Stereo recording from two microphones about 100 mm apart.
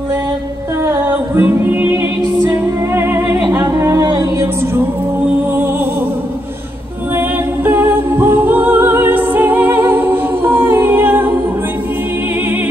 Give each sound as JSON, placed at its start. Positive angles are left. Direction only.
{"t": 1.0, "sound": "a capella", "side_deg": -20}
{"t": 2.5, "sound": "music", "side_deg": -25}
{"t": 3.7, "sound": "a sound", "side_deg": -35}
{"t": 7.2, "sound": "music", "side_deg": -20}